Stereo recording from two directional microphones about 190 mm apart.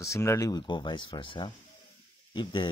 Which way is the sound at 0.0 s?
15° left (ahead or behind).